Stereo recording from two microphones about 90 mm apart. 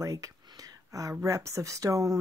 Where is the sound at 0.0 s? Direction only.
40° right (ahead or behind).